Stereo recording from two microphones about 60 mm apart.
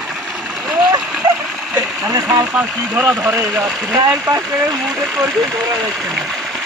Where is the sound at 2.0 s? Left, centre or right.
Right.